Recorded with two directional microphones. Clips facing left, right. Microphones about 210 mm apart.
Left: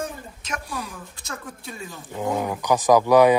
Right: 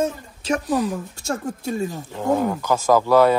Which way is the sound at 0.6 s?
45° right (ahead or behind).